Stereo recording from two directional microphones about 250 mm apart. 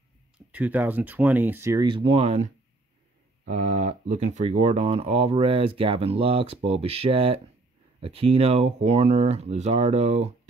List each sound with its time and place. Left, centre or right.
0.5 s speech: centre; by 10.3 s right